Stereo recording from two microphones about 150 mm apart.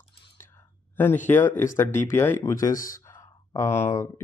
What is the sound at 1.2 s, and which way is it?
Speech, 15° left (ahead or behind).